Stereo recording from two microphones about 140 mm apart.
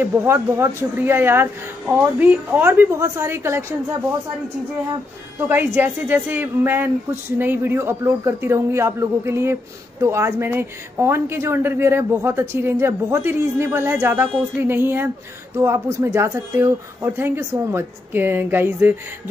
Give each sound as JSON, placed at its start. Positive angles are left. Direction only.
{"t": 0.0, "sound": "a woman's voice", "side_deg": -20}
{"t": 5.4, "sound": "a woman's voice", "side_deg": -15}